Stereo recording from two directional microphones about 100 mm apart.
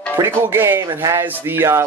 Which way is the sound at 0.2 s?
25° right (ahead or behind).